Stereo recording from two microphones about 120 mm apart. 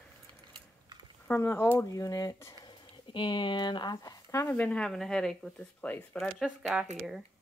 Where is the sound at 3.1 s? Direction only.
40° left (ahead or behind).